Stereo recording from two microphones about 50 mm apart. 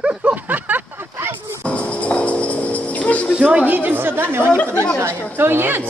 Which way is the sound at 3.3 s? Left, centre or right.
Centre.